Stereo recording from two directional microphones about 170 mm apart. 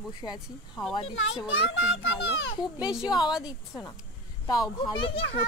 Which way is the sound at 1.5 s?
90° left.